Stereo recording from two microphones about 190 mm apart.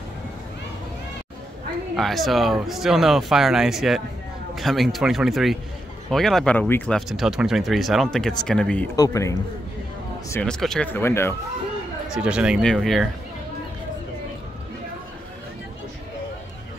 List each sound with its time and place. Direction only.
2.0 s speech: centre (ahead or behind)
8.9 s speech: 20° left (ahead or behind)
10.3 s speech: 5° left (ahead or behind)
12.1 s speech: 5° right (ahead or behind)